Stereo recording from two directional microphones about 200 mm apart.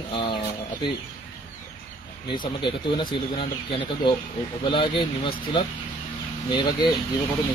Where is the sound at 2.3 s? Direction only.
25° left (ahead or behind).